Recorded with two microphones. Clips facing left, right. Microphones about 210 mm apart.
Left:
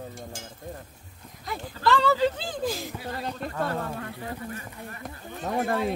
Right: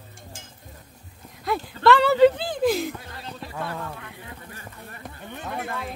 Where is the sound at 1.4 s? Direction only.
70° right (ahead or behind).